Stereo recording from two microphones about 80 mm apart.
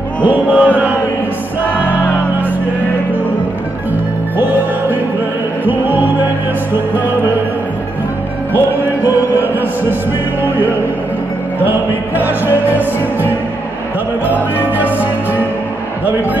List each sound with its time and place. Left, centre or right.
0.3 s music: centre
4.4 s music: right
8.5 s heart sounds: right
10.4 s music: right
12.6 s music: right
14.8 s music: right